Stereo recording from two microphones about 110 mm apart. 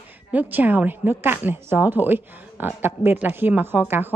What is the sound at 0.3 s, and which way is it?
A woman's voice, 15° right (ahead or behind).